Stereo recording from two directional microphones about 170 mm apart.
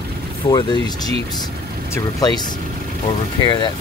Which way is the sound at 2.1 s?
25° left (ahead or behind).